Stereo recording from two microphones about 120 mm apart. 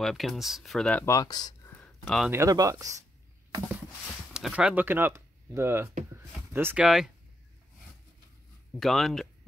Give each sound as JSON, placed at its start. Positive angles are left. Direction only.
{"t": 0.0, "sound": "speech", "side_deg": 0}
{"t": 1.0, "sound": "speech", "side_deg": 30}
{"t": 1.7, "sound": "a sound", "side_deg": 5}
{"t": 2.3, "sound": "speech", "side_deg": -25}
{"t": 4.3, "sound": "speech", "side_deg": -10}
{"t": 6.1, "sound": "a sound", "side_deg": -15}
{"t": 8.7, "sound": "speech", "side_deg": 0}